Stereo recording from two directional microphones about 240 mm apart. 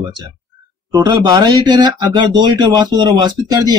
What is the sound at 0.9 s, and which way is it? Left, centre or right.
Speech, centre.